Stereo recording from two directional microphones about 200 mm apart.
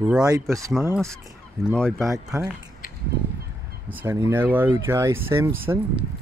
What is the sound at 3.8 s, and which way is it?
Speech, 10° right (ahead or behind).